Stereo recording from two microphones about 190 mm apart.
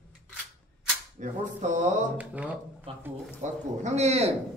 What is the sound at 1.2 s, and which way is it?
Speech, 40° right (ahead or behind).